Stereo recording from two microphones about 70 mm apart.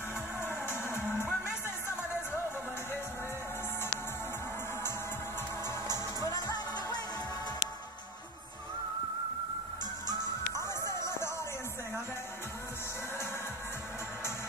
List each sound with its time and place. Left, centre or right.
0.4 s music: left
6.4 s music: left
11.1 s music: left